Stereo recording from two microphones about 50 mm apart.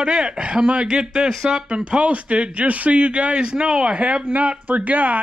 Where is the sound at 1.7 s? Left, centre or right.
Right.